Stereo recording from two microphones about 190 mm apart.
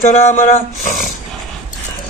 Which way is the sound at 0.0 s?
40° left (ahead or behind).